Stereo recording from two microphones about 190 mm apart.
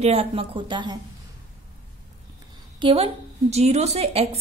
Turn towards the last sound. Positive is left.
turn(degrees=-35)  # may be behind; listen again after turning